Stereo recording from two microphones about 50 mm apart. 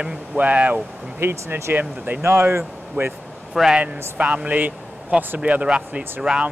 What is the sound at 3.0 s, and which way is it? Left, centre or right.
Speech, right.